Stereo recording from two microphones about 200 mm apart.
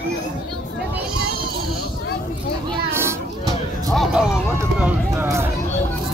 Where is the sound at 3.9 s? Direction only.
Centre (ahead or behind).